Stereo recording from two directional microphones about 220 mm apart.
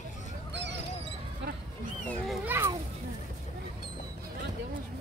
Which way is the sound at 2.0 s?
Centre (ahead or behind).